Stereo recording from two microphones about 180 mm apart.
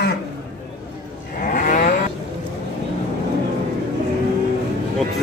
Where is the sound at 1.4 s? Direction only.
45° left (ahead or behind).